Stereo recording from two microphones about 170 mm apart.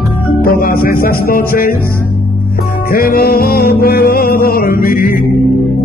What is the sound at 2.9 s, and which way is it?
Music, 60° left (ahead or behind).